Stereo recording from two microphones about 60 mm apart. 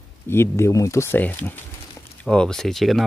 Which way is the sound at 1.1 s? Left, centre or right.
Left.